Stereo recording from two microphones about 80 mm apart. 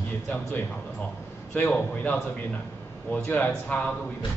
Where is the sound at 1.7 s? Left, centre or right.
Centre.